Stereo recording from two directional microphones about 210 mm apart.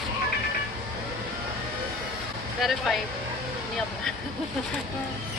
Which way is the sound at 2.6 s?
Centre (ahead or behind).